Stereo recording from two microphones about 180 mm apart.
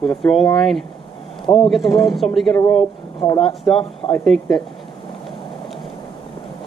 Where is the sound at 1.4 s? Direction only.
30° left (ahead or behind).